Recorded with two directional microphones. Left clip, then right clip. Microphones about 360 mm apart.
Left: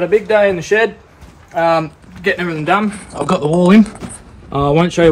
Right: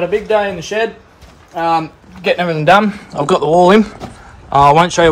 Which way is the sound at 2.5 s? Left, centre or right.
Right.